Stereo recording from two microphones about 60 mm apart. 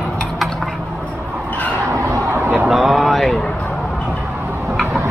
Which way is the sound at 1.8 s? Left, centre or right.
Right.